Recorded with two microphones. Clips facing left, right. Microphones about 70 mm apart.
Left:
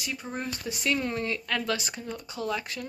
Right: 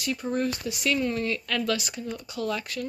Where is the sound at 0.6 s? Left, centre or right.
Left.